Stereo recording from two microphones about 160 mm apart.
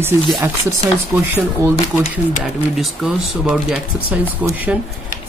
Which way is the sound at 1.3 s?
15° right (ahead or behind).